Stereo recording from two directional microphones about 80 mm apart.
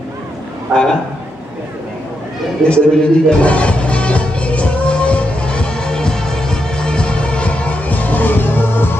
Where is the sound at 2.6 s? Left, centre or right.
Centre.